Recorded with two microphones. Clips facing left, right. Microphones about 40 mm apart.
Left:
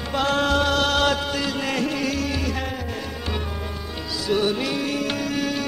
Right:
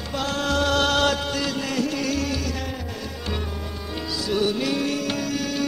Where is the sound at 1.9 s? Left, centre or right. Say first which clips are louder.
Even; centre.